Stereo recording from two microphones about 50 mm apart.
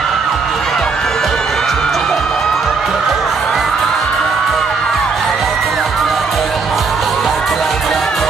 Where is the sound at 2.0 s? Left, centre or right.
Centre.